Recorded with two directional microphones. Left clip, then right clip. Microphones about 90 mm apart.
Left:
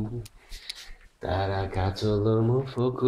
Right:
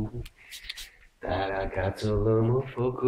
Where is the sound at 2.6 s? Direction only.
65° left (ahead or behind).